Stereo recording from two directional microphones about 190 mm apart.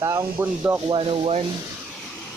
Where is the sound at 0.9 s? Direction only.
30° right (ahead or behind).